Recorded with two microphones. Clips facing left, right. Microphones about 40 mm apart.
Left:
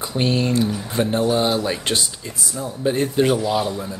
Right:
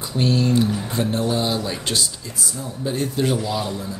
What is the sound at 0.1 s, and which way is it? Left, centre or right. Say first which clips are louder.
Speech: right 1 dB; left.